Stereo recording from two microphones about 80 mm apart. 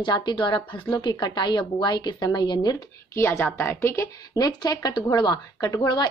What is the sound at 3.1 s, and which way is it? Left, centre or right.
Speech, left.